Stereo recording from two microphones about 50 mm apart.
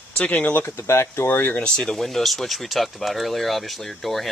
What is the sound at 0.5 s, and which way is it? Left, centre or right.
Speech, left.